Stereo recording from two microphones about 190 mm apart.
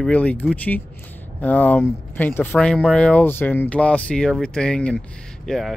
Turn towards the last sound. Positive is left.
turn(degrees=0)  # may be behind; listen again after turning